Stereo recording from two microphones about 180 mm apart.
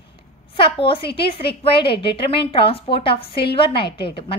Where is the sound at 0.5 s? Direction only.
30° left (ahead or behind).